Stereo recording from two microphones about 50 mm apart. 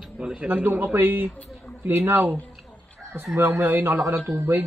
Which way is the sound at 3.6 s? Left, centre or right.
Right.